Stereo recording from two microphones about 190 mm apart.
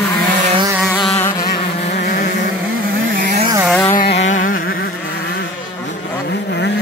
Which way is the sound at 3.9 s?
60° left (ahead or behind).